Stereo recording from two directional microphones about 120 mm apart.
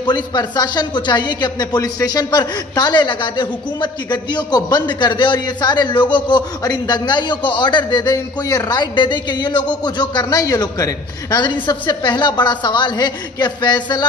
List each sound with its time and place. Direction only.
0.0 s a man's voice: 40° left (ahead or behind)